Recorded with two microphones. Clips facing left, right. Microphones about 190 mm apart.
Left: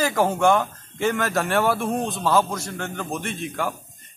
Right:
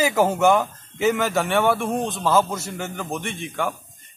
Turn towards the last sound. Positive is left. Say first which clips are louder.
# even
turn(degrees=0)  # may be behind; listen again after turning